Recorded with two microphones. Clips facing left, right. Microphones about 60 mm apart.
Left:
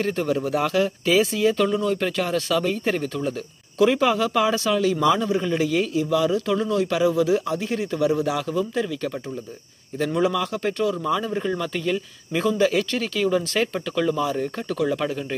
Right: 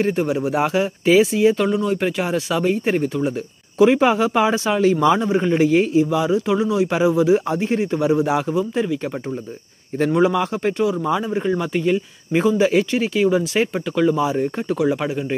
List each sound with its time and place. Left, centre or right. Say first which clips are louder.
0.0 s speech: right 4 dB; right
9.9 s a man's voice: right 5 dB; right; by 15.2 s centre